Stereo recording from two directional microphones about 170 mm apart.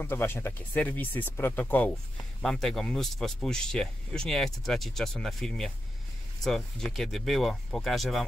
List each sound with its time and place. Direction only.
0.0 s speech: 15° left (ahead or behind)